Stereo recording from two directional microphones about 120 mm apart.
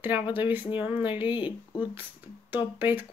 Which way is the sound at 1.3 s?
40° left (ahead or behind).